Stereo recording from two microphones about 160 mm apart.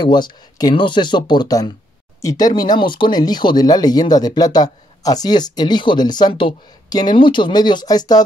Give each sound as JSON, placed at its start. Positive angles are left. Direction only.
{"t": 0.0, "sound": "speech", "side_deg": 30}